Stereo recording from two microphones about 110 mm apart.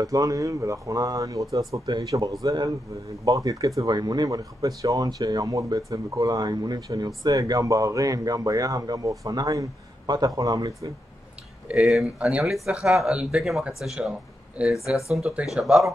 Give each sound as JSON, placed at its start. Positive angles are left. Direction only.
{"t": 0.0, "sound": "speech", "side_deg": -35}
{"t": 11.7, "sound": "speech", "side_deg": 0}